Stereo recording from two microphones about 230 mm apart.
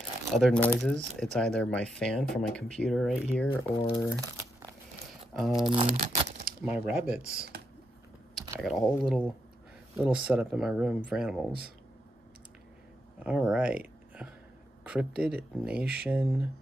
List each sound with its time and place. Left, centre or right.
0.3 s speech: centre
3.4 s speech: centre
5.7 s speech: right
6.6 s speech: centre
13.2 s speech: centre
14.9 s speech: centre